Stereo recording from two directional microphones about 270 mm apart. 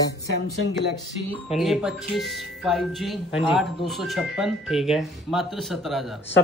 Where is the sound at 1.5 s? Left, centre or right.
Centre.